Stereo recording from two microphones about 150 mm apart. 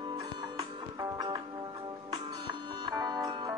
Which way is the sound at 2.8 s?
25° right (ahead or behind).